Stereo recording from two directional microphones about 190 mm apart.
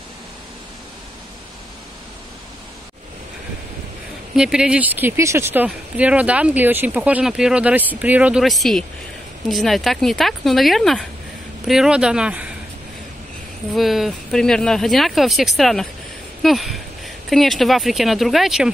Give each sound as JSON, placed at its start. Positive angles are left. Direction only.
{"t": 4.4, "sound": "speech", "side_deg": -5}
{"t": 13.7, "sound": "speech", "side_deg": 0}